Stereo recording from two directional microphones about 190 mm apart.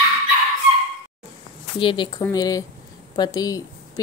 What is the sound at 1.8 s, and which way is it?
Speech, 25° left (ahead or behind).